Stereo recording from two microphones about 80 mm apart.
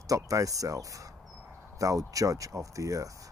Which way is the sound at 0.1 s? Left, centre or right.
Right.